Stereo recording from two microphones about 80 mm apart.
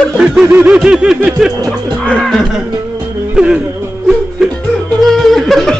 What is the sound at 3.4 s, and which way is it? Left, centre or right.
Music, centre.